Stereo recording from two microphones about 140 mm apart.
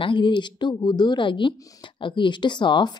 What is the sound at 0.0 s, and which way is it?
Speech, 35° left (ahead or behind).